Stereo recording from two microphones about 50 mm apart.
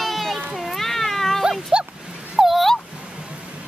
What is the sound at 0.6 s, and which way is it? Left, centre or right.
Cat, centre.